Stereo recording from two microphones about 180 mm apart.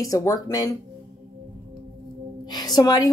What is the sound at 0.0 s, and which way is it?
Speech, 20° left (ahead or behind).